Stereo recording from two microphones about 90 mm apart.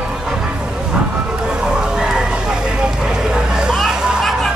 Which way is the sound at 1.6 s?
10° right (ahead or behind).